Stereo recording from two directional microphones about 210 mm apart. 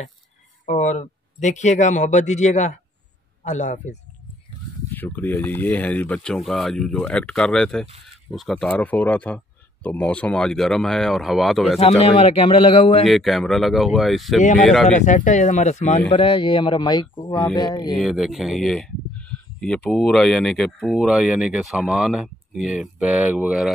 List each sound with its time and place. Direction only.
0.7 s speech: 35° left (ahead or behind)
4.9 s speech: 10° left (ahead or behind)
12.0 s speech: 30° left (ahead or behind)
13.0 s speech: centre (ahead or behind)
14.9 s speech: 35° left (ahead or behind)
17.3 s speech: 10° left (ahead or behind)
17.6 s speech: 20° left (ahead or behind)
17.9 s speech: centre (ahead or behind)